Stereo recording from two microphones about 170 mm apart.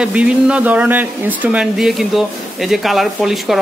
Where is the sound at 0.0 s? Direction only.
5° right (ahead or behind).